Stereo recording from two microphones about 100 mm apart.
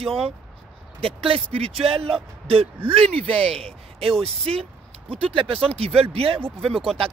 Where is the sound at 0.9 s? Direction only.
70° right (ahead or behind).